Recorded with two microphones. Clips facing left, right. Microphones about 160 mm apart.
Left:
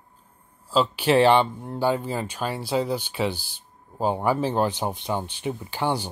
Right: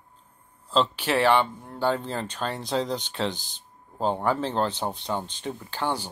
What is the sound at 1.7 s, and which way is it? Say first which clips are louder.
Speech: left 2 dB; 10° left (ahead or behind).